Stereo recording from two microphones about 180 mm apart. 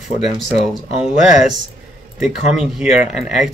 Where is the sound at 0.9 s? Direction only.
35° left (ahead or behind).